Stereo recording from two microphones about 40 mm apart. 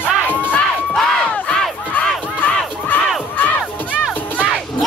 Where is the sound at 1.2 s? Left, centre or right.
Centre.